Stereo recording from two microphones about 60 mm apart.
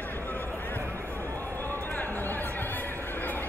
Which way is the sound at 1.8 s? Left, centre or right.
Left.